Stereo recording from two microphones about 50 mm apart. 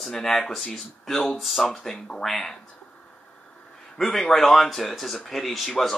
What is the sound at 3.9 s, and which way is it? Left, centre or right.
Speech, centre.